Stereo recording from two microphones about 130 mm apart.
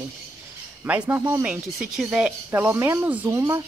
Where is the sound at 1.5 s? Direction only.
10° right (ahead or behind).